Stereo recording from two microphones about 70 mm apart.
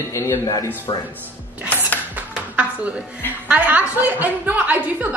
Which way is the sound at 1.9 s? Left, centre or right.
Left.